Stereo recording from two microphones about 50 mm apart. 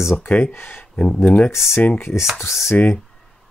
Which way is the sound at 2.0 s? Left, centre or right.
Left.